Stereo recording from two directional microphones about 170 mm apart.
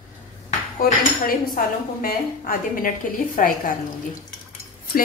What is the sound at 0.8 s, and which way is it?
A woman's voice, 55° left (ahead or behind).